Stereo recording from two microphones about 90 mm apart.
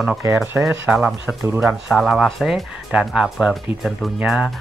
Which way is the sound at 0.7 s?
20° right (ahead or behind).